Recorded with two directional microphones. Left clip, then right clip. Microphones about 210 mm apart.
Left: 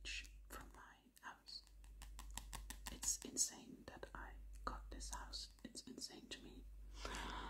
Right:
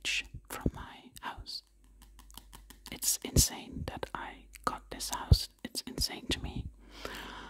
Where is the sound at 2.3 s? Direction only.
10° left (ahead or behind).